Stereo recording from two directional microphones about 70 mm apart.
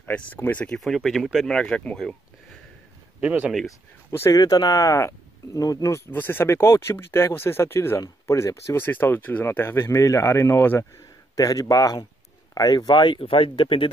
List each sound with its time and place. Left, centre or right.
0.0 s speech: left
0.7 s speech: centre
1.5 s speech: centre
3.2 s speech: centre
4.3 s speech: left
6.1 s speech: left
8.8 s speech: left
10.8 s speech: left
12.5 s speech: left